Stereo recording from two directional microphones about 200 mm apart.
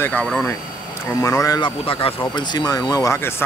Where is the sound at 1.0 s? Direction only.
15° left (ahead or behind).